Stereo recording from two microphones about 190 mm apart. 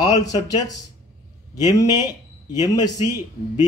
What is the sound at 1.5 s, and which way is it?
Speech, 20° left (ahead or behind).